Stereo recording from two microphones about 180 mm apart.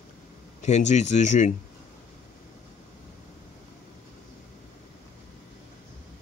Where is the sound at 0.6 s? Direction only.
40° left (ahead or behind).